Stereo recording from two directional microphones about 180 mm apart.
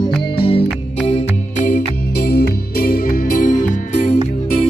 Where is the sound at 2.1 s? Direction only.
60° left (ahead or behind).